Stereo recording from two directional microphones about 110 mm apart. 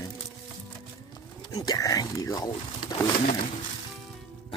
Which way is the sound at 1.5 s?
35° left (ahead or behind).